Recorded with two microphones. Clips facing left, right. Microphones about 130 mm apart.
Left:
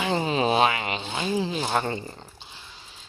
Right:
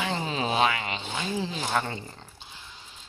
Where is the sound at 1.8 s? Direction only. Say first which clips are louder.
Left 2 dB; 30° left (ahead or behind).